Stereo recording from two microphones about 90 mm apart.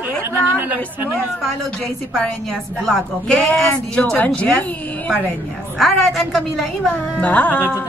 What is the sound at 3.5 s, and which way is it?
A woman's voice, 10° left (ahead or behind).